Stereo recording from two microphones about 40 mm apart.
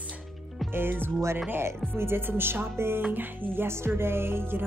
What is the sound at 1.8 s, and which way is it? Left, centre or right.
Music, right.